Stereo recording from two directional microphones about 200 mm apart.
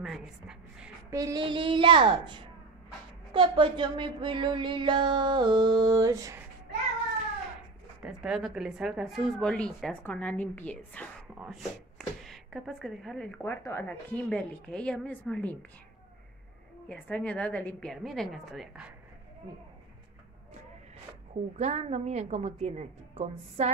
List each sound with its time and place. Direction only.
0.0 s a sound: centre (ahead or behind)
1.1 s speech: 20° right (ahead or behind)
8.0 s a woman's voice: 5° right (ahead or behind)
11.3 s chopping: 5° right (ahead or behind)
12.2 s a woman's voice: centre (ahead or behind)
16.9 s a woman's voice: 5° left (ahead or behind)
21.5 s a woman's voice: 35° right (ahead or behind)